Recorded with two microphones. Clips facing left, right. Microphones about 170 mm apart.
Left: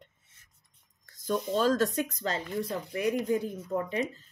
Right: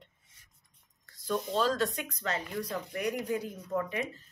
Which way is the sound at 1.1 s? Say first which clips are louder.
Left 2 dB; 45° left (ahead or behind).